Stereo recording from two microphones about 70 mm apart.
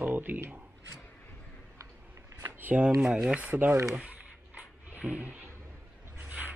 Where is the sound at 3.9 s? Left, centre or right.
Right.